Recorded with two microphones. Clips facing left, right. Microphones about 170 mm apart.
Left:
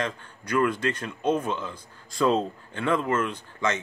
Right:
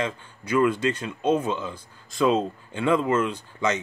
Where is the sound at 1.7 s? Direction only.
25° right (ahead or behind).